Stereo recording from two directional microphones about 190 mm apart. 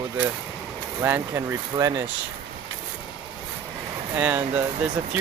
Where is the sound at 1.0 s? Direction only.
15° right (ahead or behind).